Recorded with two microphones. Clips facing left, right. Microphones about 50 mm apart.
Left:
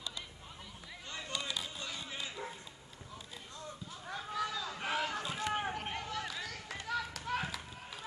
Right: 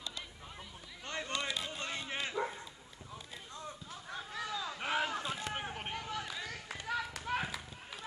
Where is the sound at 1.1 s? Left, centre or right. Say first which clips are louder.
Right 3 dB; right.